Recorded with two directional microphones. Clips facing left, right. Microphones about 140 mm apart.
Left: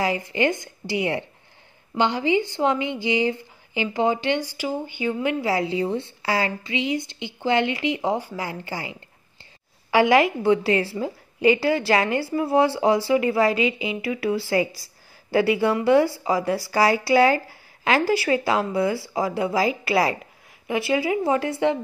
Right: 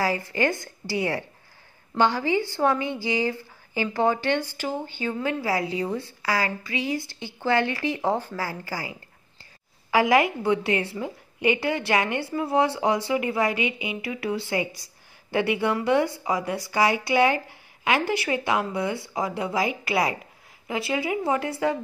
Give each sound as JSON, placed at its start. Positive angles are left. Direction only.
{"t": 0.0, "sound": "a woman's voice", "side_deg": 20}
{"t": 14.0, "sound": "speech", "side_deg": -25}
{"t": 15.5, "sound": "speech", "side_deg": 30}
{"t": 17.5, "sound": "a sound", "side_deg": -20}
{"t": 18.0, "sound": "a woman's voice", "side_deg": 30}